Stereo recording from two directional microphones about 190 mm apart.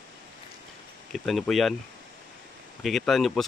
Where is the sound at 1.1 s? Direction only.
Centre (ahead or behind).